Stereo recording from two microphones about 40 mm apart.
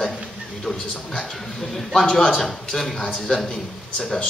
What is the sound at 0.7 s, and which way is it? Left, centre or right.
Speech, centre.